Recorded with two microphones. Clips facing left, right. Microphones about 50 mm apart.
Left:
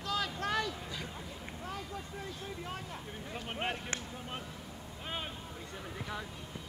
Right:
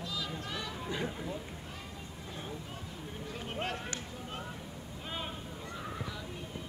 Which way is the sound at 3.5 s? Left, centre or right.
Left.